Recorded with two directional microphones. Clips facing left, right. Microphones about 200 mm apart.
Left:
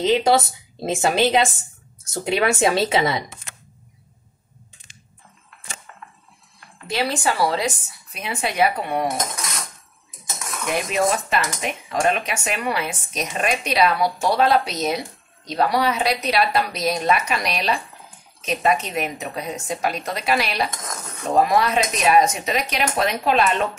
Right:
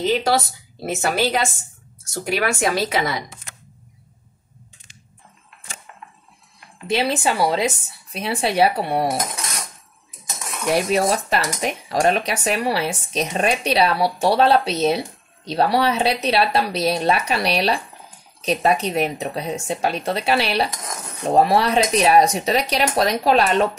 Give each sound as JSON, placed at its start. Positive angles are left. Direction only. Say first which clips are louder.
{"t": 0.0, "sound": "a woman's voice", "louder": "left 2 dB", "side_deg": 20}
{"t": 6.9, "sound": "speech", "louder": "right 2 dB", "side_deg": -20}
{"t": 10.7, "sound": "speech", "louder": "right 3 dB", "side_deg": -35}